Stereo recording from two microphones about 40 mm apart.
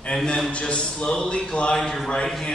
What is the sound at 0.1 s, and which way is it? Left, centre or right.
A man's voice, centre.